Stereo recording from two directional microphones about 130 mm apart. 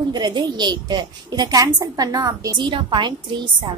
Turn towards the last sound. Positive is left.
turn(degrees=-35)  # may be behind; listen again after turning